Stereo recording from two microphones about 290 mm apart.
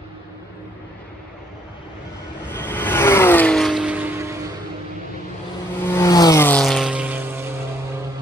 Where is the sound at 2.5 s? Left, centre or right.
Centre.